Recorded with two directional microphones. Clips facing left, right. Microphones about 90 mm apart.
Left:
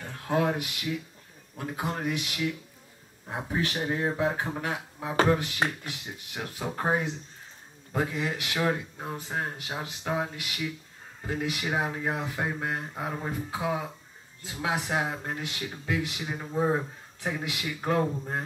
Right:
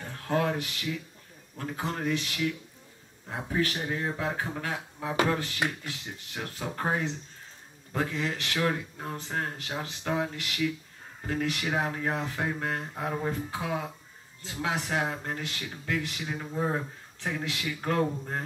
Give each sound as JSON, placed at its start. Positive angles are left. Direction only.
{"t": 0.3, "sound": "speech", "side_deg": 15}